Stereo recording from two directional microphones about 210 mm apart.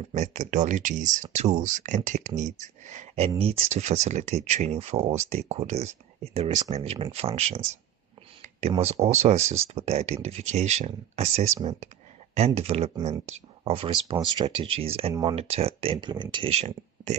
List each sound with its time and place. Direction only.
0.1 s speech: 35° right (ahead or behind)